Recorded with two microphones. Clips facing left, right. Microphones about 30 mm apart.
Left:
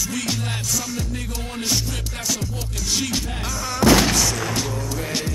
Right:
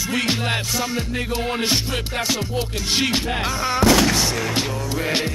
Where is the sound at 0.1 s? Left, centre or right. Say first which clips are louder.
Right 5 dB; right.